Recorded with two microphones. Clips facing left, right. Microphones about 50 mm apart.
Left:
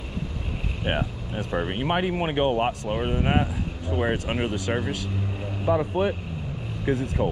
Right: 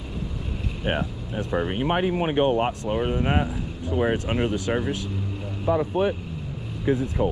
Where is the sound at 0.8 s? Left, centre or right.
Centre.